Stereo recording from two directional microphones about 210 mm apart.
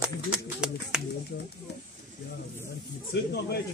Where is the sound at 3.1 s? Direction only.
50° left (ahead or behind).